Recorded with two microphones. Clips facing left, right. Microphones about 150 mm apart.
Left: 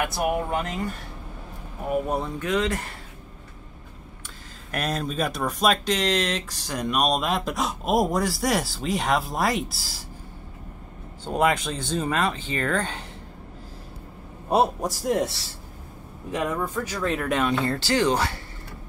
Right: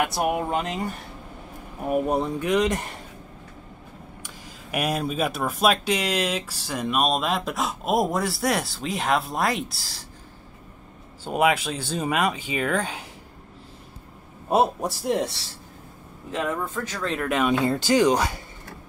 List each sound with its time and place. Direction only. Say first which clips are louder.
0.0 s speech: right 1 dB; 20° right (ahead or behind)
2.0 s speech: right 3 dB; 15° right (ahead or behind)
4.6 s speech: right 2 dB; 10° right (ahead or behind)
11.2 s speech: right 1 dB; 5° right (ahead or behind)
14.5 s speech: even; centre (ahead or behind)
16.3 s speech: left 1 dB; 15° left (ahead or behind)
17.5 s speech: right 3 dB; 15° right (ahead or behind)